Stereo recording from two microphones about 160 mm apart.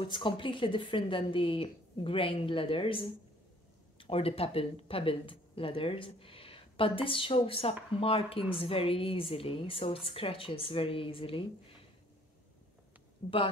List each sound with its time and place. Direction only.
0.0 s speech: 30° left (ahead or behind)
13.2 s speech: 40° left (ahead or behind)